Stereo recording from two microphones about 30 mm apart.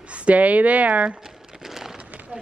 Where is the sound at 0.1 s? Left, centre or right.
Right.